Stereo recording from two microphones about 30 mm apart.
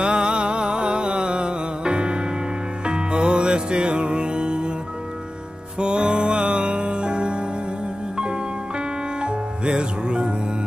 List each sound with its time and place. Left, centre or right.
0.0 s music: right
5.8 s music: right
9.2 s music: right